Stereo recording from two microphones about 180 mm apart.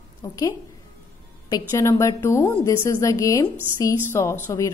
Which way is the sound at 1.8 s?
15° left (ahead or behind).